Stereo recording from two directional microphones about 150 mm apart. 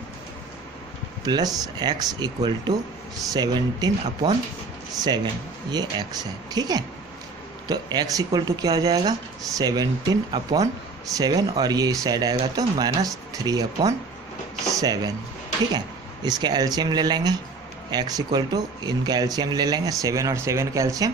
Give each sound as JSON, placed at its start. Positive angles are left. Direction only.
{"t": 1.2, "sound": "speech", "side_deg": -25}